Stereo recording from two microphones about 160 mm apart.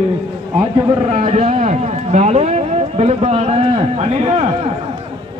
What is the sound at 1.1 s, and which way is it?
A man's voice, 45° right (ahead or behind).